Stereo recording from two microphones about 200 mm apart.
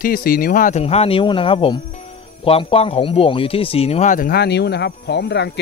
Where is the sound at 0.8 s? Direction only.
30° left (ahead or behind).